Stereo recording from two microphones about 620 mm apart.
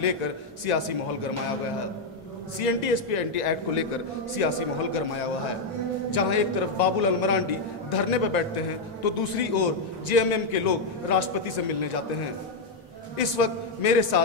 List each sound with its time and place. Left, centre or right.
0.7 s a man's voice: left
2.6 s a man's voice: left
6.1 s a man's voice: left
13.2 s a man's voice: left